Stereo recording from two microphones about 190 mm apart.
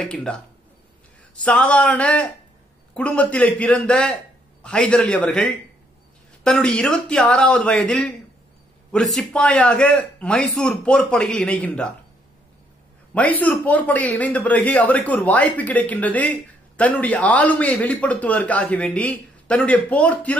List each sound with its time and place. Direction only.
0.0 s speech: 5° left (ahead or behind)
1.4 s a man's voice: 5° left (ahead or behind)
13.1 s a man's voice: 10° left (ahead or behind)